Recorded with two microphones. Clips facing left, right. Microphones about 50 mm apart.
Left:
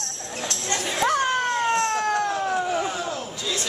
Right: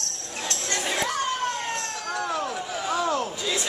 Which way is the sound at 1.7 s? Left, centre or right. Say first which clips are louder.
Left 8 dB; left.